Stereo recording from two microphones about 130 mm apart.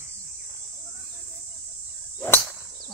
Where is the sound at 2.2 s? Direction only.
15° left (ahead or behind).